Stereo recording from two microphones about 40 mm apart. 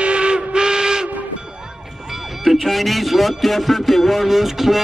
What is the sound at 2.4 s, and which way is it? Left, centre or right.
Speech, centre.